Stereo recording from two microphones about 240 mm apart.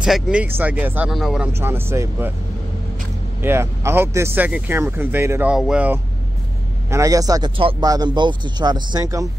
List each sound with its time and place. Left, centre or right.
0.0 s speech: centre
3.4 s speech: centre